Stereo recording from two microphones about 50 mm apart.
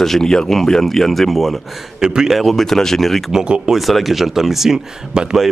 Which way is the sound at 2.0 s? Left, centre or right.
Centre.